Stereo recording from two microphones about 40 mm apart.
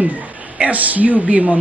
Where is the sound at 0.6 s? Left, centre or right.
Right.